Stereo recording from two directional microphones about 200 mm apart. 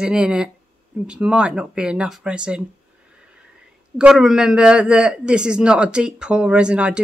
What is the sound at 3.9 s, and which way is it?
Speech, 5° right (ahead or behind).